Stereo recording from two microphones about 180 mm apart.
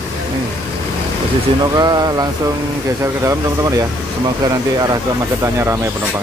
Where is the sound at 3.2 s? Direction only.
20° right (ahead or behind).